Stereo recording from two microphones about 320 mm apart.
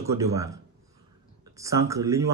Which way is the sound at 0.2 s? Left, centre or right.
Centre.